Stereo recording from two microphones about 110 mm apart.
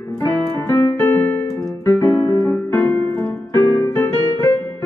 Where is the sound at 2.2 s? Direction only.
20° left (ahead or behind).